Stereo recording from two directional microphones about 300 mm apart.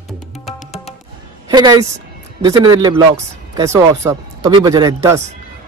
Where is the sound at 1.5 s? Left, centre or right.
Centre.